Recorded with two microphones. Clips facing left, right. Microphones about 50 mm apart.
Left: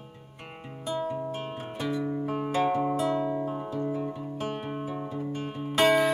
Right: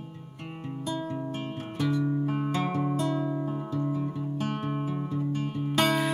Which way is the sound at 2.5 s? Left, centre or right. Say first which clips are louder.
Left 7 dB; centre.